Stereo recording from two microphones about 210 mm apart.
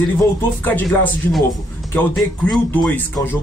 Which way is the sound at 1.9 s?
10° left (ahead or behind).